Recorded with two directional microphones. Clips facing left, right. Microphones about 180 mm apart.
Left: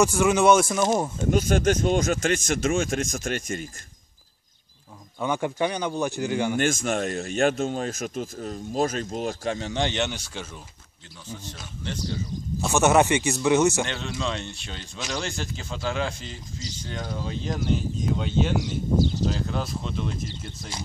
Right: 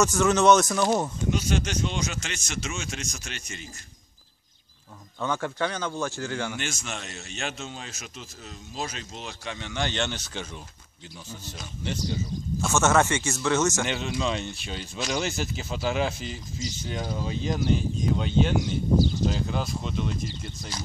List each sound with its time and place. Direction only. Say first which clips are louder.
0.0 s speech: left 1 dB; 10° left (ahead or behind)
1.3 s speech: left 8 dB; 50° left (ahead or behind)
5.2 s speech: left 3 dB; 15° left (ahead or behind)
6.5 s speech: left 10 dB; 50° left (ahead or behind)
9.8 s speech: left 3 dB; 20° left (ahead or behind)
11.2 s a man's voice: left 3 dB; 10° right (ahead or behind)
12.5 s speech: left 3 dB; 15° left (ahead or behind)
13.8 s speech: right 2 dB; 5° right (ahead or behind)
20.7 s speech: left 1 dB; 25° left (ahead or behind)